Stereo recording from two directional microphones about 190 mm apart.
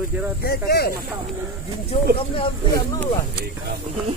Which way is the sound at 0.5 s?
55° left (ahead or behind).